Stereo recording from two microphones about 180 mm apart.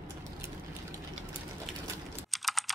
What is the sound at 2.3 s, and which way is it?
Computer keyboard, centre (ahead or behind).